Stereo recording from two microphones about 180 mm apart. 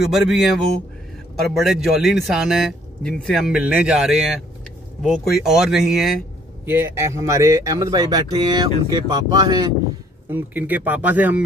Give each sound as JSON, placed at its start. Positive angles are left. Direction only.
{"t": 0.0, "sound": "a man's voice", "side_deg": 0}
{"t": 6.6, "sound": "speech", "side_deg": -10}
{"t": 10.3, "sound": "speech", "side_deg": -10}